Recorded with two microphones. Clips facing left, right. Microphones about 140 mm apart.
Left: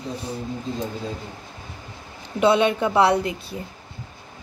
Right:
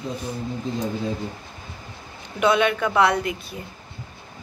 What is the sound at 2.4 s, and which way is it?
Speech, 30° left (ahead or behind).